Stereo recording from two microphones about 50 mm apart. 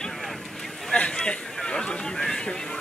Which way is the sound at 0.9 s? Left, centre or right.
Centre.